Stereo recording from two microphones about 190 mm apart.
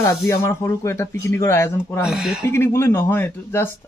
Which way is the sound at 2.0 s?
5° right (ahead or behind).